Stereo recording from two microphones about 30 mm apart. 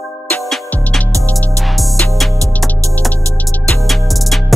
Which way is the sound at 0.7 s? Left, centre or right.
Left.